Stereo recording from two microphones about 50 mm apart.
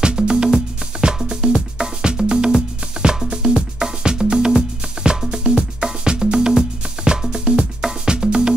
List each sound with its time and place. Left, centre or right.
0.0 s music: centre